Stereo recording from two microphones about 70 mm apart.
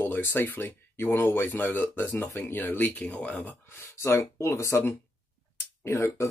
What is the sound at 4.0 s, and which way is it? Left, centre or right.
Speech, left.